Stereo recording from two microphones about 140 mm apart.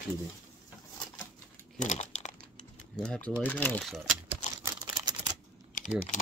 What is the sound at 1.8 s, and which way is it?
Crumpling, 60° left (ahead or behind).